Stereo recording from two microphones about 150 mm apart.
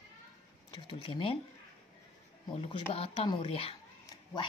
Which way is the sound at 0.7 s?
35° left (ahead or behind).